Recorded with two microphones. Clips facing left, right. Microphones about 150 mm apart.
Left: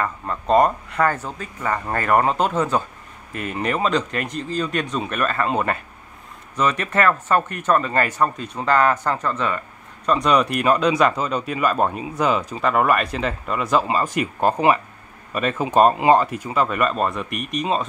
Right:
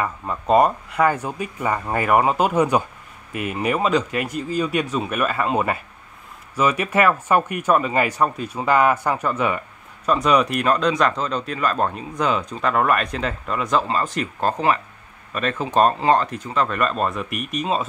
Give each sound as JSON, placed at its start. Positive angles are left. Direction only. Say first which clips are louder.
{"t": 0.0, "sound": "speech", "louder": "even", "side_deg": -5}